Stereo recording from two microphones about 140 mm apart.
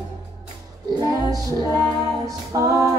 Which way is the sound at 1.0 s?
25° right (ahead or behind).